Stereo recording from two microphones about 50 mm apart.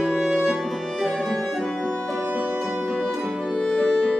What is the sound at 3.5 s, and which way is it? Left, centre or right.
Music, centre.